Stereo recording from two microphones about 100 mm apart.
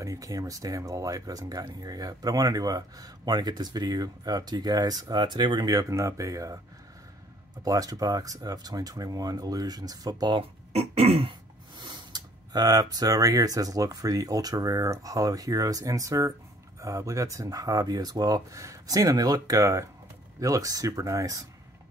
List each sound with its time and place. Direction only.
0.0 s speech: 35° right (ahead or behind)
7.6 s speech: 40° right (ahead or behind)
10.7 s throat clearing: 90° right
11.8 s speech: 45° right (ahead or behind)